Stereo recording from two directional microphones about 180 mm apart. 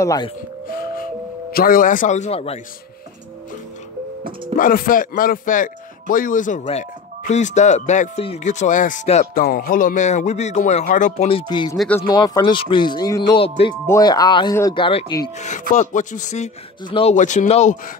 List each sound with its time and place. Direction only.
0.0 s speech: 20° left (ahead or behind)
0.7 s music: 55° left (ahead or behind)
1.5 s a man's voice: 55° left (ahead or behind); by 2.6 s 35° left (ahead or behind)
4.6 s a man's voice: 50° left (ahead or behind)
9.3 s a man's voice: 55° left (ahead or behind)
11.2 s speech: 25° left (ahead or behind)
11.7 s speech: centre (ahead or behind)
12.1 s speech: 25° left (ahead or behind)
15.3 s a man's voice: 40° left (ahead or behind)